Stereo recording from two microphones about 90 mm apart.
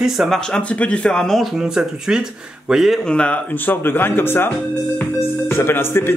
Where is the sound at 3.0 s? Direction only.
10° left (ahead or behind).